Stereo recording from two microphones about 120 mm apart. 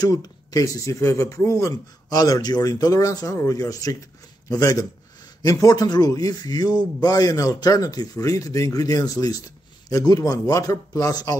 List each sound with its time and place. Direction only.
0.0 s speech: 30° left (ahead or behind)